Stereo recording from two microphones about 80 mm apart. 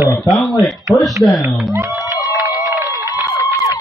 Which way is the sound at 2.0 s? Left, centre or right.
Left.